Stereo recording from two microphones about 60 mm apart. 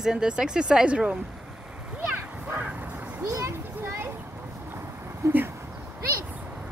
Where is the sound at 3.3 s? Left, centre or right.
Right.